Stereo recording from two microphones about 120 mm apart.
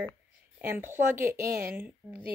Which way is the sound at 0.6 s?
20° right (ahead or behind).